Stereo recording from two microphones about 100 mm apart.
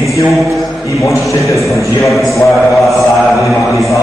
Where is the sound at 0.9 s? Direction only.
30° left (ahead or behind).